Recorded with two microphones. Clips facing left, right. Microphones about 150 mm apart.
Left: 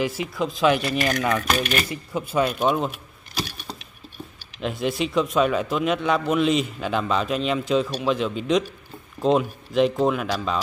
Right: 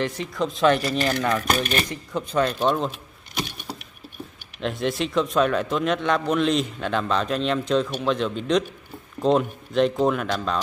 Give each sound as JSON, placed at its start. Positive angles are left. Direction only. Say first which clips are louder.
{"t": 0.0, "sound": "speech", "louder": "left 1 dB", "side_deg": 5}
{"t": 1.5, "sound": "speech", "louder": "even", "side_deg": -40}
{"t": 1.9, "sound": "speech", "louder": "even", "side_deg": 5}
{"t": 2.9, "sound": "a sound", "louder": "even", "side_deg": -20}
{"t": 4.6, "sound": "speech", "louder": "even", "side_deg": 0}